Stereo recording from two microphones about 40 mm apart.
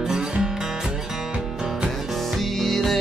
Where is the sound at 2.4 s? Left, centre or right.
Centre.